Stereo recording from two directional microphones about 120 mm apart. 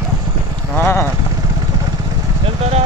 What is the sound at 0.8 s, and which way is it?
Vehicle, 20° left (ahead or behind).